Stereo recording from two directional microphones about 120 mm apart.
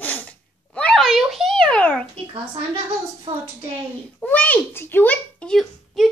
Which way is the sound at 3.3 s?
50° right (ahead or behind).